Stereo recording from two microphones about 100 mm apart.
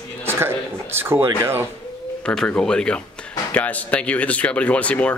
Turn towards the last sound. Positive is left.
turn(degrees=15)  # may be behind; listen again after turning